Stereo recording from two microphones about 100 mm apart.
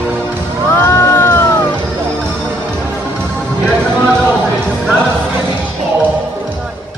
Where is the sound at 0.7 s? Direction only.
25° left (ahead or behind).